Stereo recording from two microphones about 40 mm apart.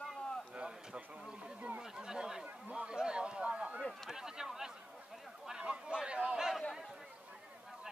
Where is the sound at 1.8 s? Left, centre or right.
Centre.